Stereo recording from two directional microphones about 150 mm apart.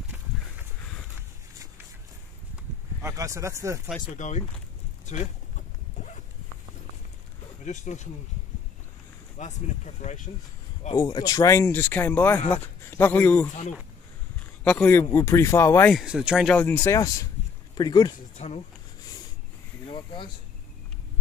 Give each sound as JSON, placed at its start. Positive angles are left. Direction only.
{"t": 3.0, "sound": "speech", "side_deg": -20}
{"t": 4.2, "sound": "speech", "side_deg": 55}
{"t": 7.6, "sound": "speech", "side_deg": 55}
{"t": 9.4, "sound": "speech", "side_deg": 50}
{"t": 10.9, "sound": "speech", "side_deg": 25}
{"t": 14.6, "sound": "speech", "side_deg": 10}
{"t": 15.9, "sound": "speech", "side_deg": 0}
{"t": 16.5, "sound": "speech", "side_deg": 15}
{"t": 18.4, "sound": "speech", "side_deg": 45}